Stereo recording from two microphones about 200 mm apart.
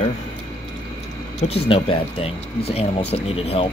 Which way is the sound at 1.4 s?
30° left (ahead or behind).